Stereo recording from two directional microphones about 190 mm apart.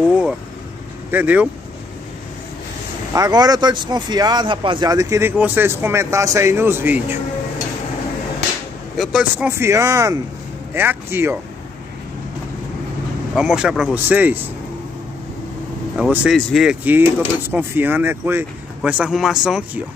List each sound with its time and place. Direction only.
1.1 s speech: 10° right (ahead or behind)
3.2 s speech: 20° right (ahead or behind)
8.9 s speech: centre (ahead or behind)
13.3 s speech: 5° right (ahead or behind)
16.0 s speech: centre (ahead or behind)